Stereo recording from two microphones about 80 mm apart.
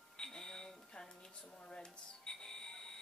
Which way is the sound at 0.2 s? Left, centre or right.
Centre.